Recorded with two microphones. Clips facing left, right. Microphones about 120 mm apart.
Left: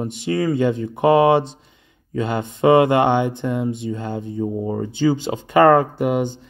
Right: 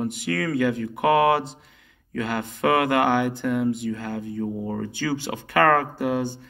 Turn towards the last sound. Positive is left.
turn(degrees=20)  # may be behind; listen again after turning